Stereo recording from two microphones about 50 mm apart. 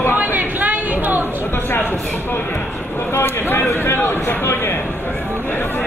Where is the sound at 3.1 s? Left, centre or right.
Left.